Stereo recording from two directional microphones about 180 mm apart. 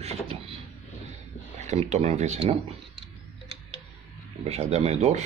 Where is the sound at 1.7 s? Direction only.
40° right (ahead or behind).